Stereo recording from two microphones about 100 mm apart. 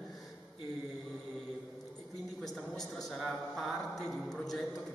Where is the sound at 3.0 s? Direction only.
Centre (ahead or behind).